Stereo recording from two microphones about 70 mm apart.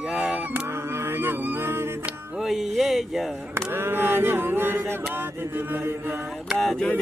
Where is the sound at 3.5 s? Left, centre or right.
Right.